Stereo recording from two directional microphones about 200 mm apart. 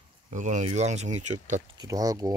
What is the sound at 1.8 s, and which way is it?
Speech, 15° right (ahead or behind).